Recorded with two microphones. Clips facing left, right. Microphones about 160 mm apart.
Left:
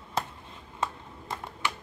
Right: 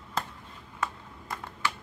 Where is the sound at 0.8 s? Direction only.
25° left (ahead or behind).